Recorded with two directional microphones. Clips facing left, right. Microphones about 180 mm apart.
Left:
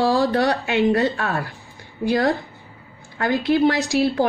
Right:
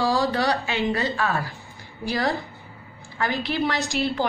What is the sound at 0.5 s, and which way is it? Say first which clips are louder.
Speech: left 6 dB; centre (ahead or behind).